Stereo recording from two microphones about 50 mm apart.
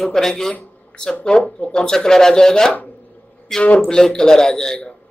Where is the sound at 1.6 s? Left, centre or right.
Centre.